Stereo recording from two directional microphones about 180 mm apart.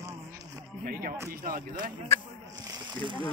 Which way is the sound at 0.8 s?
55° right (ahead or behind).